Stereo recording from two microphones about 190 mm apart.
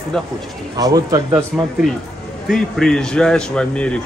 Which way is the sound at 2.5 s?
Centre (ahead or behind).